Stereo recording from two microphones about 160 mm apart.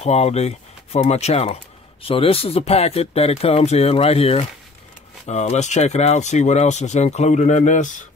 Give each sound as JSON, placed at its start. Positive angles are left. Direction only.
{"t": 0.0, "sound": "speech", "side_deg": 40}